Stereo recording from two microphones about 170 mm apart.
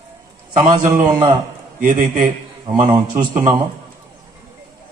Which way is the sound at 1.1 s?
25° right (ahead or behind).